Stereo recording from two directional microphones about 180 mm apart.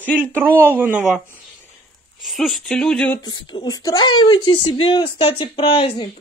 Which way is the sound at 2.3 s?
Centre (ahead or behind).